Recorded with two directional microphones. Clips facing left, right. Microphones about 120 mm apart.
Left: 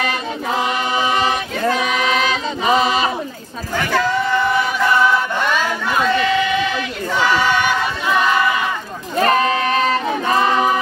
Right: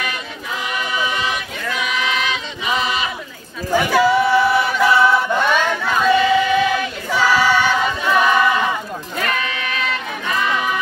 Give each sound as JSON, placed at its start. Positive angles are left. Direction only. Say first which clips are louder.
{"t": 0.0, "sound": "choir", "louder": "left 6 dB", "side_deg": 35}
{"t": 3.7, "sound": "a sound", "louder": "right 4 dB", "side_deg": -10}
{"t": 5.7, "sound": "a sound", "louder": "even", "side_deg": 5}
{"t": 6.0, "sound": "crowd", "louder": "right 4 dB", "side_deg": -10}
{"t": 7.2, "sound": "choir", "louder": "right 1 dB", "side_deg": -10}
{"t": 9.1, "sound": "music", "louder": "left 9 dB", "side_deg": 35}